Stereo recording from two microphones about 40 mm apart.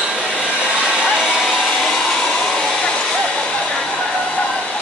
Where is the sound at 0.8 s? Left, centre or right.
Centre.